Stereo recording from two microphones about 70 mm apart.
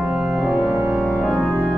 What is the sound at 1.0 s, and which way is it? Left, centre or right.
Organ, left.